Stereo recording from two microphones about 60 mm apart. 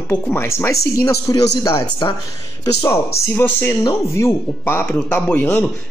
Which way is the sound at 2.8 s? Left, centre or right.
Left.